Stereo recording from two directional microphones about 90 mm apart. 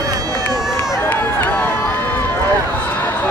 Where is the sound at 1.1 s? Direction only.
20° left (ahead or behind).